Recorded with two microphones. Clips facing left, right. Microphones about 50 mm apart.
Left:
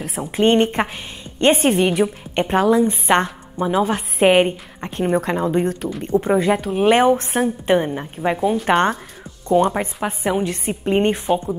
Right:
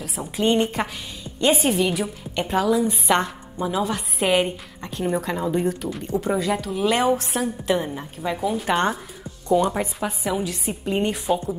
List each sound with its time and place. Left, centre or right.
0.2 s a woman's voice: left